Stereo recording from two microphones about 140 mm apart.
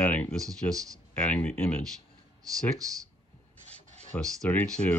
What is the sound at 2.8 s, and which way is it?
Speech, 25° right (ahead or behind).